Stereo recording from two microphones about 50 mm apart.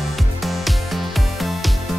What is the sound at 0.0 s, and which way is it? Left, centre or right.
Music, centre.